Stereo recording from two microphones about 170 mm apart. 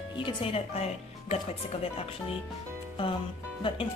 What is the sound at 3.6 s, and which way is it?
Speech, 30° left (ahead or behind).